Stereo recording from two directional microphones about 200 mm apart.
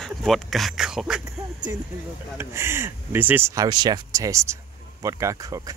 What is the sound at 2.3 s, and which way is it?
Speech, 10° right (ahead or behind).